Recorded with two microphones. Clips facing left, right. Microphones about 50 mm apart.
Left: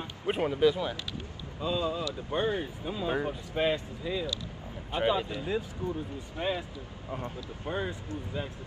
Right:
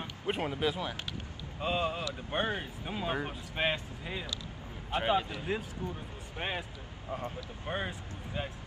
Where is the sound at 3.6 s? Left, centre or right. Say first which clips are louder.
Left 3 dB; right.